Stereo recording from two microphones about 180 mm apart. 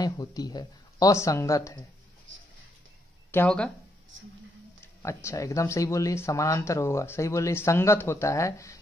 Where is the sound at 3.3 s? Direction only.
10° left (ahead or behind).